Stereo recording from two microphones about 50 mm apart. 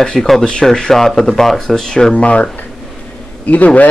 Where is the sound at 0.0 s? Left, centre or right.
Centre.